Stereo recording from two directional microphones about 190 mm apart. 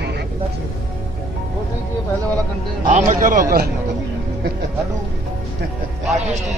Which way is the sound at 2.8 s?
40° right (ahead or behind).